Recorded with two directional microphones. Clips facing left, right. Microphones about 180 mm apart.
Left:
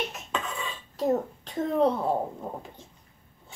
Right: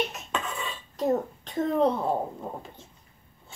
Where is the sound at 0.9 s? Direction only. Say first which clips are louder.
Even; 5° left (ahead or behind).